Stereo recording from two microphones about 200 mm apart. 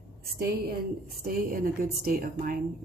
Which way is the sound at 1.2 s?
45° right (ahead or behind).